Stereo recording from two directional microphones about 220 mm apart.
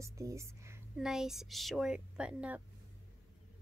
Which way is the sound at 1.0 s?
Centre (ahead or behind).